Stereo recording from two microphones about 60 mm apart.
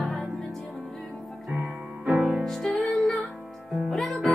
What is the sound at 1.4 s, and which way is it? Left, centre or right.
Music, centre.